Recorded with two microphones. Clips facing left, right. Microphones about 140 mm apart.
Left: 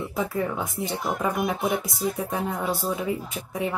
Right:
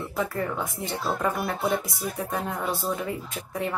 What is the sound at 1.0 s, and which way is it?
Speech, 15° left (ahead or behind).